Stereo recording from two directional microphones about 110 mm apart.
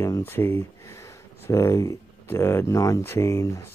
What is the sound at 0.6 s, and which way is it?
Speech, 30° left (ahead or behind).